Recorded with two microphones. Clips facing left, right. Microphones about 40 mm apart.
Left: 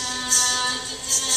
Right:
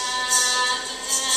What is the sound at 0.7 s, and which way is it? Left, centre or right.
Music, right.